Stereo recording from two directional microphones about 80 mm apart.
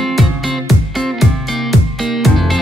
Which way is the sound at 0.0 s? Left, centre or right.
Centre.